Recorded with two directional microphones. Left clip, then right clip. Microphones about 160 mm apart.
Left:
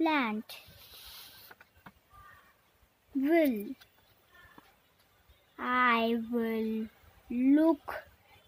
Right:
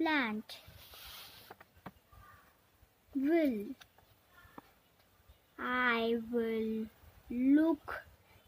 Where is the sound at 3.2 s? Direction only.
50° left (ahead or behind).